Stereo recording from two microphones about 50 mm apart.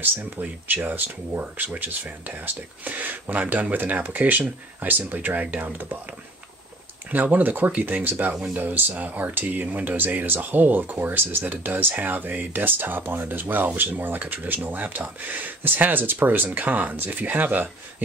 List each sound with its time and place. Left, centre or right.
0.0 s speech: right
7.1 s speech: right